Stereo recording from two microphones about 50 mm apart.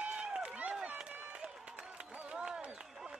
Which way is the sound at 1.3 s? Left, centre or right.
Centre.